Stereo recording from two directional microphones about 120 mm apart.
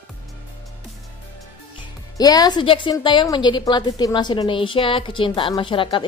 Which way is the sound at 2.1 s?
35° left (ahead or behind).